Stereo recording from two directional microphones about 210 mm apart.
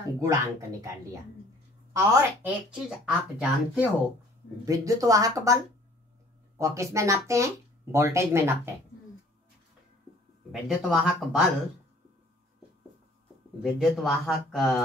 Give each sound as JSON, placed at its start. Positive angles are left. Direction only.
{"t": 0.2, "sound": "speech", "side_deg": -15}
{"t": 2.0, "sound": "speech", "side_deg": -5}
{"t": 4.6, "sound": "speech", "side_deg": -15}
{"t": 6.6, "sound": "speech", "side_deg": -15}
{"t": 10.5, "sound": "speech", "side_deg": 0}
{"t": 13.6, "sound": "speech", "side_deg": 0}